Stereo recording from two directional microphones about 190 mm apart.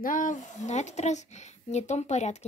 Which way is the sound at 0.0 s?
45° left (ahead or behind).